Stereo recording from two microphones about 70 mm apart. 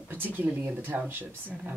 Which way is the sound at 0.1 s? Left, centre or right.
Right.